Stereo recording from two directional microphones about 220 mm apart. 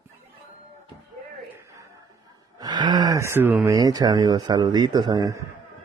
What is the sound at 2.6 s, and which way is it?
Speech, 20° right (ahead or behind).